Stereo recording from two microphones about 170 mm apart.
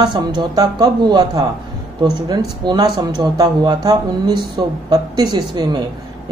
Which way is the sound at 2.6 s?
25° right (ahead or behind).